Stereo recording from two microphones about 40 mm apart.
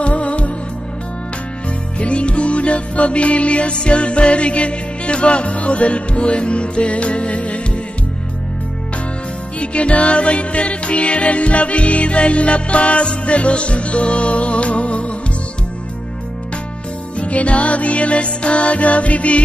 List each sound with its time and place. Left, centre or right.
0.0 s music: left
2.0 s music: left
9.6 s music: left
17.2 s music: left